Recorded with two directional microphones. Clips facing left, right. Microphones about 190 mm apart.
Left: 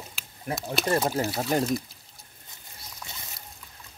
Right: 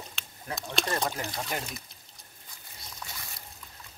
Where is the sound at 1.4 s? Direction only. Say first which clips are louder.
Left 10 dB; 40° left (ahead or behind).